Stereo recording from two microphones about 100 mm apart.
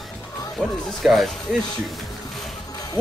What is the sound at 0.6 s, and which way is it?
Speech, 10° left (ahead or behind).